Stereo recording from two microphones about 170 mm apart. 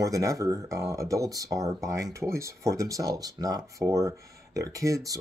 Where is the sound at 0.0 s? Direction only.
20° right (ahead or behind).